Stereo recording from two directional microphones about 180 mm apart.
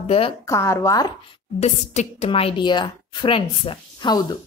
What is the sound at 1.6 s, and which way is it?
A woman's voice, 35° left (ahead or behind).